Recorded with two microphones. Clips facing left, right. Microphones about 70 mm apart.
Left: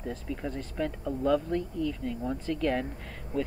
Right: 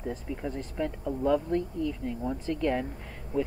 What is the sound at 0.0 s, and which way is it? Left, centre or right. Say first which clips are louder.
Speech: right 1 dB; centre.